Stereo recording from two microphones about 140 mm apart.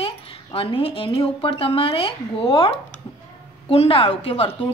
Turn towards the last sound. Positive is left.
turn(degrees=40)  # may be behind; listen again after turning